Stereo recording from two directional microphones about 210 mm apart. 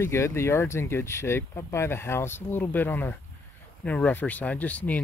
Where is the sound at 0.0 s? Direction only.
10° left (ahead or behind).